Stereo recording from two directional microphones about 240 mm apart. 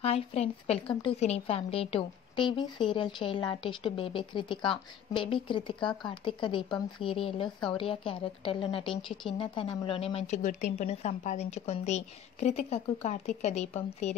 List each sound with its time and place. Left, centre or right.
0.0 s a woman's voice: left